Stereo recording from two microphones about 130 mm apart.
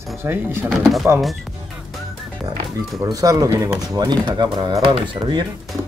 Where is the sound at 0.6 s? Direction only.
Centre (ahead or behind).